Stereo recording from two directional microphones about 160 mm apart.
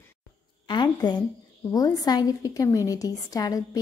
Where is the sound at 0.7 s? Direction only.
25° left (ahead or behind).